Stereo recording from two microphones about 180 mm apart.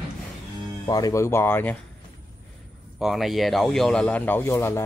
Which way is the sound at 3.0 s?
Centre (ahead or behind).